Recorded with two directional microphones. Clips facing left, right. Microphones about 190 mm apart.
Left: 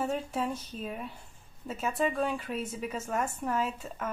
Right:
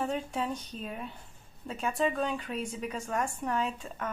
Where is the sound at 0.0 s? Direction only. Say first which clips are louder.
Left 1 dB; 5° left (ahead or behind).